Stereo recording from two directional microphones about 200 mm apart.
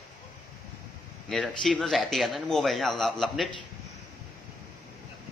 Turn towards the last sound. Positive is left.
turn(degrees=0)  # may be behind; listen again after turning